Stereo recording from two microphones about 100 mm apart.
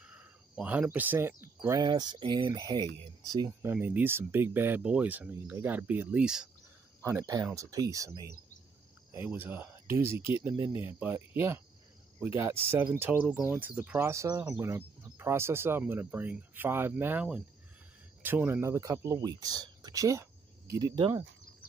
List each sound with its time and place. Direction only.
0.0 s speech: 10° right (ahead or behind); by 1.9 s 30° right (ahead or behind)
1.9 s speech: 45° right (ahead or behind)
3.6 s speech: 20° right (ahead or behind)
7.0 s speech: 30° right (ahead or behind)
9.1 s speech: 25° right (ahead or behind)
10.0 s speech: 60° left (ahead or behind)
10.9 s speech: 20° right (ahead or behind)
20.7 s speech: 45° right (ahead or behind)